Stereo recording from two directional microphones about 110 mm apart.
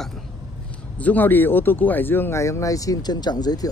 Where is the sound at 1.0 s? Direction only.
15° left (ahead or behind); by 3.7 s 40° left (ahead or behind).